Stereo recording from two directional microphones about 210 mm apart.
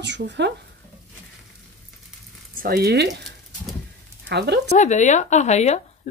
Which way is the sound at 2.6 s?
45° right (ahead or behind).